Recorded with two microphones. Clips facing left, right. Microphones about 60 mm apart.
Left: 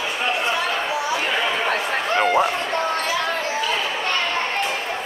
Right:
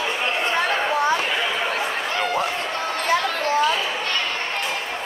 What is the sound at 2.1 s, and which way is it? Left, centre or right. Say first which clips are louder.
Speech: left 7 dB; left.